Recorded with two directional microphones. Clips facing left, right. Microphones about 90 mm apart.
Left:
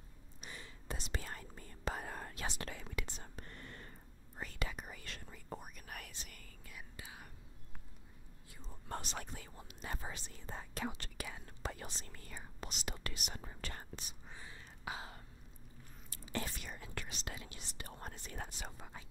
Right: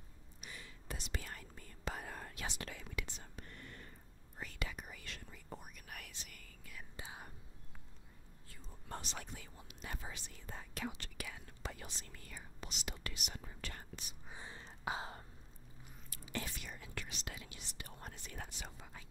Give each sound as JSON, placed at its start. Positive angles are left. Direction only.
{"t": 0.4, "sound": "whispering", "side_deg": 30}
{"t": 7.0, "sound": "whispering", "side_deg": -25}
{"t": 8.8, "sound": "speech", "side_deg": 45}
{"t": 14.3, "sound": "gasp", "side_deg": -25}
{"t": 16.1, "sound": "speech", "side_deg": 35}